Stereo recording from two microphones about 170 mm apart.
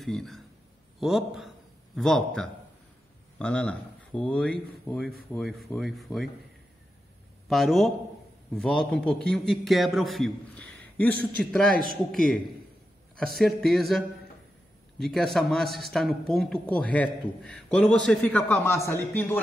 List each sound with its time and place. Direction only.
0.0 s a man's voice: centre (ahead or behind)
7.4 s a man's voice: centre (ahead or behind)
11.7 s a man's voice: 55° right (ahead or behind)
12.1 s a man's voice: centre (ahead or behind)
13.4 s a man's voice: centre (ahead or behind)